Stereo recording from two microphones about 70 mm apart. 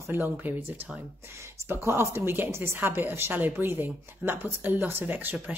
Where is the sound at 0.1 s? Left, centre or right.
Right.